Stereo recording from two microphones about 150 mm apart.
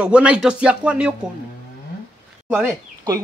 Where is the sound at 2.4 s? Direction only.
10° right (ahead or behind).